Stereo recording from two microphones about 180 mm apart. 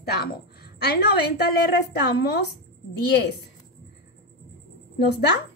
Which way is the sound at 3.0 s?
65° left (ahead or behind).